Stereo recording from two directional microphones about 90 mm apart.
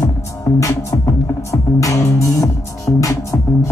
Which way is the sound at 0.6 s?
35° left (ahead or behind).